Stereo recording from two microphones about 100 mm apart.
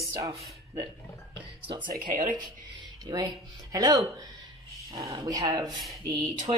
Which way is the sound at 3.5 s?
35° right (ahead or behind).